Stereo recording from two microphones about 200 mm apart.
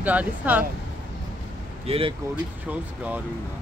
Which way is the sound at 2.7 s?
5° right (ahead or behind).